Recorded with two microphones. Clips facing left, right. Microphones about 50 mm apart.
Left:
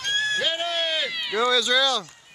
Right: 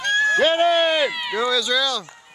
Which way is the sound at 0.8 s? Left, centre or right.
Right.